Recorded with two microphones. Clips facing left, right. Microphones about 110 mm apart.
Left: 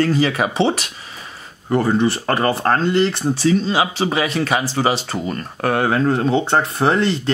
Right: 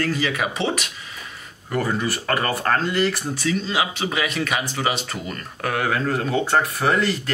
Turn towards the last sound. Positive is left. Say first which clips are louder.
# left 4 dB
turn(degrees=25)  # may be behind; listen again after turning